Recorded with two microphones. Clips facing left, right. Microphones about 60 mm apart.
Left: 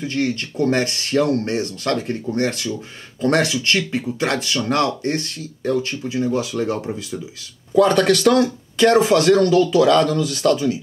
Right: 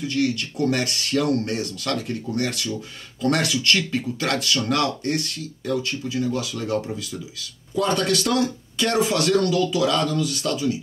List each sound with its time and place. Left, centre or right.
0.0 s speech: left
7.7 s speech: left
8.7 s speech: left